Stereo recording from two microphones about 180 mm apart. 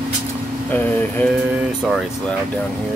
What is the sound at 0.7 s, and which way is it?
Speech, 10° left (ahead or behind).